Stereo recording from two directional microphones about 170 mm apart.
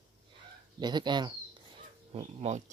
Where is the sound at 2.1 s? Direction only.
40° right (ahead or behind).